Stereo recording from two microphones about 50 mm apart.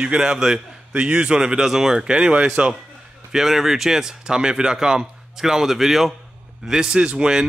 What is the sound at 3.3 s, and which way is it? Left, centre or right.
A man's voice, centre.